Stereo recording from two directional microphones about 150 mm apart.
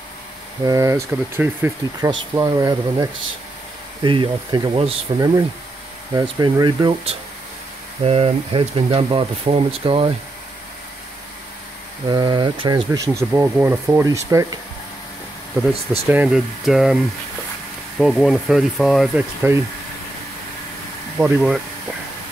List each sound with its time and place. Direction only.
0.7 s speech: 20° right (ahead or behind)
2.0 s speech: 25° right (ahead or behind)
12.1 s speech: 30° right (ahead or behind)
15.7 s speech: 40° right (ahead or behind)
16.1 s speech: 5° right (ahead or behind)
19.4 s speech: 15° right (ahead or behind)
21.2 s speech: 10° right (ahead or behind)